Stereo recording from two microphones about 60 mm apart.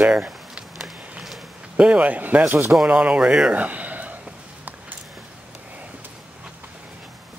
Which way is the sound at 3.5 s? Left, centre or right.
Right.